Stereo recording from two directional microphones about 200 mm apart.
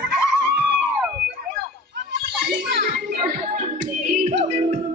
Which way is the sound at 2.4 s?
50° right (ahead or behind).